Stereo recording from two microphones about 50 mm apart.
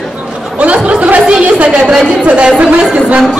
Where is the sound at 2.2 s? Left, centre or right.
Centre.